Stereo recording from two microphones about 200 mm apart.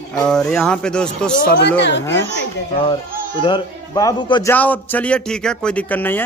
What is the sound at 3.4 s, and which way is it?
A man's voice, 20° left (ahead or behind).